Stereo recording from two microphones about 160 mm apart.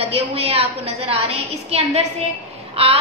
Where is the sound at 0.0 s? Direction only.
35° right (ahead or behind).